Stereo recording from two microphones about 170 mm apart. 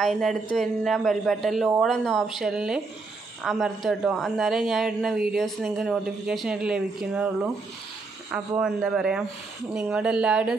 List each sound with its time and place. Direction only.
0.0 s a man's voice: centre (ahead or behind)